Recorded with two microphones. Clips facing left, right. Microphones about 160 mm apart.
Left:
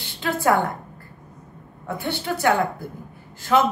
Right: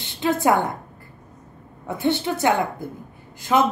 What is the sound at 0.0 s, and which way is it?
Speech, 20° right (ahead or behind).